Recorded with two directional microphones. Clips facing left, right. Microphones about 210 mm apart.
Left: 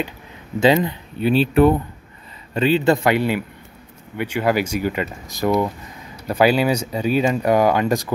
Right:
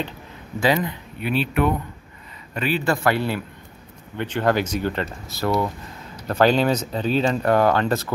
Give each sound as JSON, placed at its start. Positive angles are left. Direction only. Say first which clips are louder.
{"t": 0.6, "sound": "a man's voice", "louder": "left 5 dB", "side_deg": 25}